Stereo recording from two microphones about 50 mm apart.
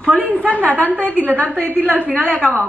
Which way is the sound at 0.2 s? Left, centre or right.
Right.